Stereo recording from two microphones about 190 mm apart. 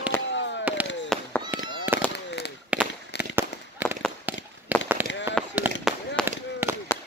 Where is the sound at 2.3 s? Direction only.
65° left (ahead or behind).